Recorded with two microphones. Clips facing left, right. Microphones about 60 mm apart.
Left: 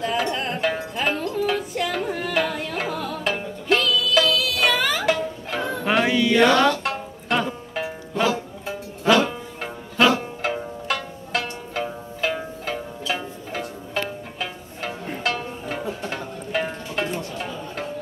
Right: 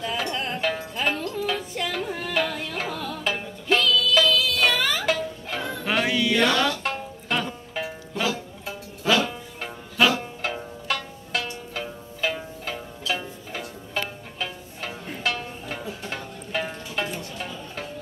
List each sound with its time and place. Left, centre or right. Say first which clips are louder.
0.0 s music: left 4 dB; centre
5.6 s music: left 4 dB; centre
6.0 s music: left 5 dB; centre
6.5 s music: left 5 dB; left
6.8 s music: left 2 dB; centre
11.7 s zither: left 5 dB; centre
12.6 s music: left 2 dB; centre
16.2 s music: left 2 dB; centre